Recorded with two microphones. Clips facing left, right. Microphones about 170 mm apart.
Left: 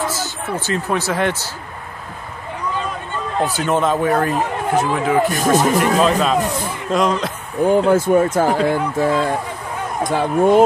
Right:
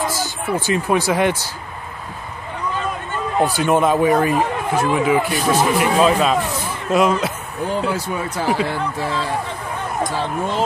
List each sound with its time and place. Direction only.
0.0 s speech: 10° right (ahead or behind)
3.3 s speech: 10° right (ahead or behind)
5.3 s speech: 45° left (ahead or behind)
5.8 s speech: 5° right (ahead or behind)
7.6 s speech: 50° left (ahead or behind)